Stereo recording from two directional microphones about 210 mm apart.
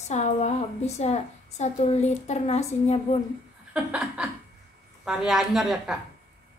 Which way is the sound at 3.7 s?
5° right (ahead or behind).